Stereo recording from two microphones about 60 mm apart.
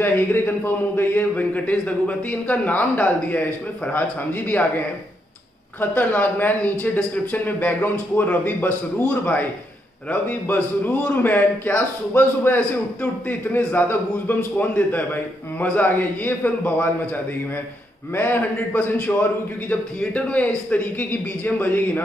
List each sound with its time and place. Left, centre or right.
0.0 s a man's voice: left
18.1 s a man's voice: left